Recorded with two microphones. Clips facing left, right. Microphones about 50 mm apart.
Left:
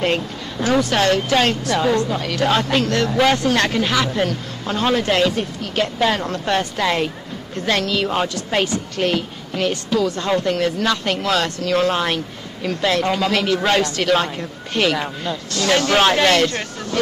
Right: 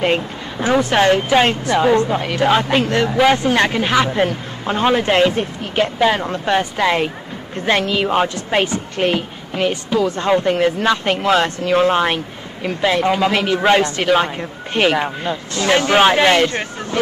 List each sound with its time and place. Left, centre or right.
0.0 s a woman's voice: centre